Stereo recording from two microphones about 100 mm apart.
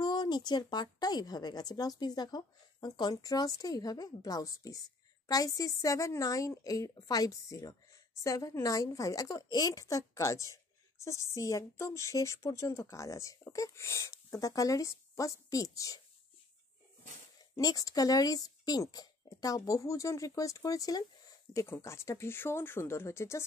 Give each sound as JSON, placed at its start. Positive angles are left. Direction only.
{"t": 0.0, "sound": "a woman's voice", "side_deg": 45}
{"t": 17.6, "sound": "a woman's voice", "side_deg": 40}